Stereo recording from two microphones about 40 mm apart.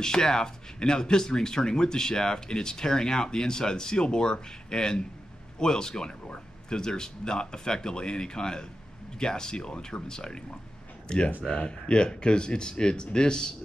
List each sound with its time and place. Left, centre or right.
0.0 s speech: centre